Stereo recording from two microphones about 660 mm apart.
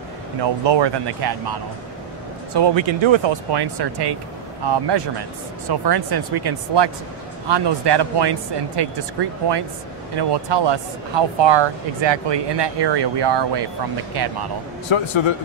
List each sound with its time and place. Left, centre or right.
0.4 s speech: right
14.9 s a man's voice: left